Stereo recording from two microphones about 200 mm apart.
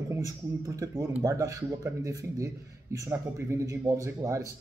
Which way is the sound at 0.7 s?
15° right (ahead or behind).